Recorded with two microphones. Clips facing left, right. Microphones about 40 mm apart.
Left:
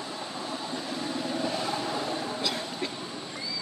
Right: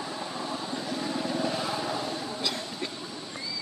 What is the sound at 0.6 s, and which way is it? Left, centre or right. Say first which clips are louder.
Vehicle: right 1 dB; centre.